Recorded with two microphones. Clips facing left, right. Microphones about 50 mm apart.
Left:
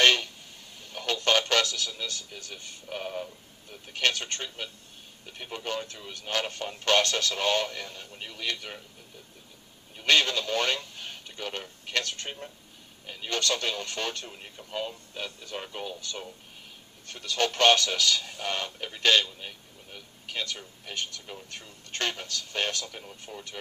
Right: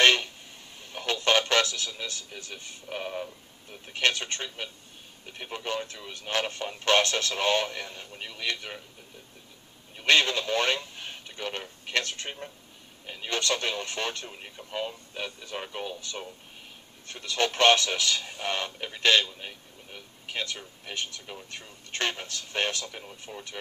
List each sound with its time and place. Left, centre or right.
0.0 s a sound: right
0.9 s goose: right
1.5 s speech: right
10.0 s speech: right
14.2 s speech: centre; by 16.0 s right
17.1 s speech: right